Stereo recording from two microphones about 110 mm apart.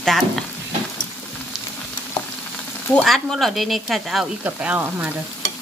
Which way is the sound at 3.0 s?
Centre (ahead or behind).